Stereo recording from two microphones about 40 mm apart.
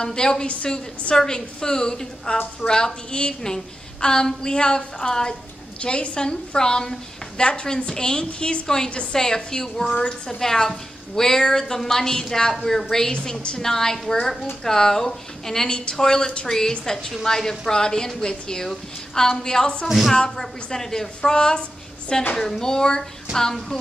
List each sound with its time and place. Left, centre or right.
0.0 s a woman's voice: centre
8.6 s speech: centre